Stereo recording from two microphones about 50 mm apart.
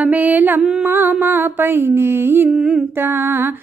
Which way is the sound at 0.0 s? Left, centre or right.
Right.